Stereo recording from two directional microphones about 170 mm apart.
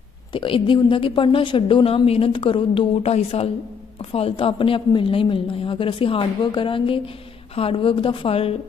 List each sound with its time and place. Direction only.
0.3 s speech: 30° left (ahead or behind)